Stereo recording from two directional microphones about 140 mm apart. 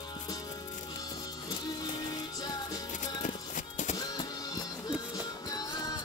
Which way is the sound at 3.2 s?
60° left (ahead or behind).